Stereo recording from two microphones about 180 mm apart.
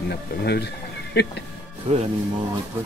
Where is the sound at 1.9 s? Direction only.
35° right (ahead or behind).